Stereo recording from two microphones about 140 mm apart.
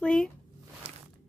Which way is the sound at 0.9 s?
40° right (ahead or behind).